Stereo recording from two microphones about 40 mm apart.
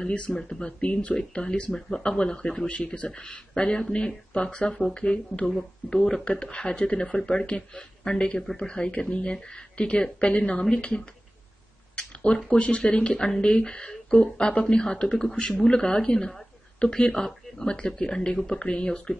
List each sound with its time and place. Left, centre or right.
0.0 s speech: left
2.7 s speech: left
3.1 s speech: left
11.9 s a sound: left
12.4 s speech: left